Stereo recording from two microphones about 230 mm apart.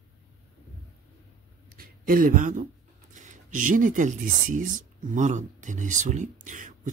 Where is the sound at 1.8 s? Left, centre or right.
Right.